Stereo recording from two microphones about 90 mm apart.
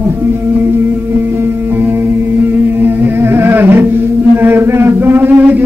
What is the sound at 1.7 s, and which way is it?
Music, 20° right (ahead or behind).